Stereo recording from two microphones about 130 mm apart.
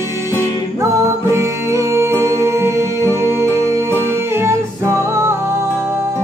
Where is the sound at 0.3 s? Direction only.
20° right (ahead or behind).